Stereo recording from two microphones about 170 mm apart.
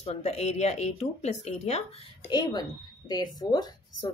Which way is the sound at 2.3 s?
25° left (ahead or behind).